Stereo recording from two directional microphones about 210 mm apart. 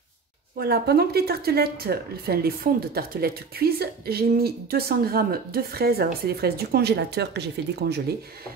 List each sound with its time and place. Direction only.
0.6 s speech: 50° right (ahead or behind)